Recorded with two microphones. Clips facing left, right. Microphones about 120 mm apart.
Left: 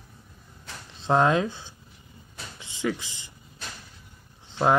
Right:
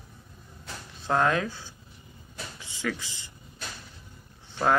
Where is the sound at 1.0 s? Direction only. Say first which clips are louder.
Left 3 dB; 20° left (ahead or behind).